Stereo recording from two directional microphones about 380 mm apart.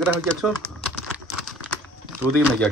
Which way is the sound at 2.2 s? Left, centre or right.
Centre.